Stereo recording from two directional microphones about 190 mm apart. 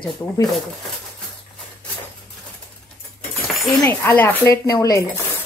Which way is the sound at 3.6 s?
10° left (ahead or behind).